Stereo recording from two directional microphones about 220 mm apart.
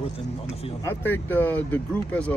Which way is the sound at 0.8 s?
10° left (ahead or behind).